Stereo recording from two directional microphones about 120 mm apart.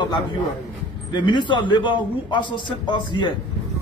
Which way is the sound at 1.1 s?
40° left (ahead or behind).